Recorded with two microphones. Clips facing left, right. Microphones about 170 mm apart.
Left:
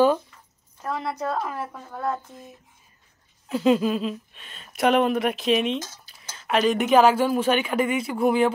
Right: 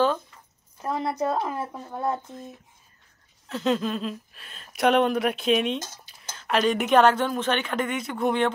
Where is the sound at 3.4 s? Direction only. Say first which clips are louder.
Left 5 dB; 10° left (ahead or behind).